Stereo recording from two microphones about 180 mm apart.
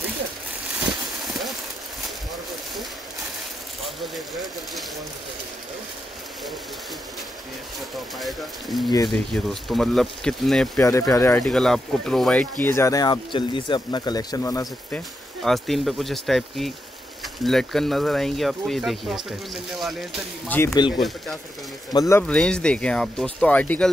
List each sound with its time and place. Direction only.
3.8 s speech: centre (ahead or behind)
8.2 s speech: centre (ahead or behind)
10.8 s speech: 15° left (ahead or behind)
15.4 s speech: centre (ahead or behind)
20.4 s speech: 10° left (ahead or behind)
21.9 s speech: 15° left (ahead or behind)
22.2 s speech: 5° left (ahead or behind)